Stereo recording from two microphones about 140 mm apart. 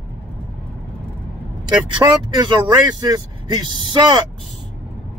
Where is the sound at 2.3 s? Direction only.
35° right (ahead or behind).